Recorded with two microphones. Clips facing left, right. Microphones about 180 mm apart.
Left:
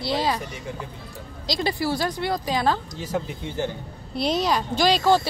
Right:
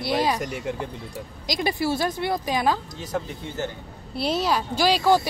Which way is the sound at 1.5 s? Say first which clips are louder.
Even; 20° right (ahead or behind).